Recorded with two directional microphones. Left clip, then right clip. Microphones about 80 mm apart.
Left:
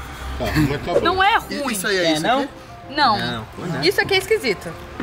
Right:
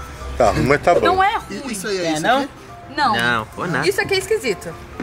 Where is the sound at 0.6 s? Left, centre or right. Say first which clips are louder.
Right 8 dB; right.